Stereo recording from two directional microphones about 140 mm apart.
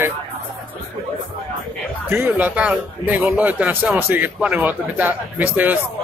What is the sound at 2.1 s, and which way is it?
A man's voice, 15° right (ahead or behind).